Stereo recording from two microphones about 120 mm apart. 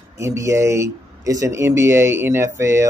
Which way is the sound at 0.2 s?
25° right (ahead or behind).